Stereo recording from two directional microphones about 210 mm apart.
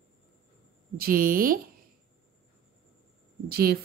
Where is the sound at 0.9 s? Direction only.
45° right (ahead or behind).